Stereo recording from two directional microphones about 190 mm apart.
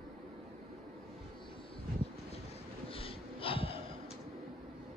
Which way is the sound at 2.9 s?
30° left (ahead or behind).